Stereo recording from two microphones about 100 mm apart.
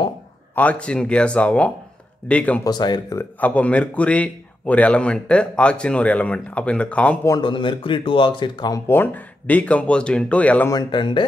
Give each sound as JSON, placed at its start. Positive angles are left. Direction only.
{"t": 0.6, "sound": "a man's voice", "side_deg": 15}
{"t": 2.6, "sound": "speech", "side_deg": 45}
{"t": 3.2, "sound": "a man's voice", "side_deg": 15}
{"t": 7.4, "sound": "speech", "side_deg": 55}
{"t": 8.8, "sound": "a man's voice", "side_deg": 20}
{"t": 10.7, "sound": "speech", "side_deg": 45}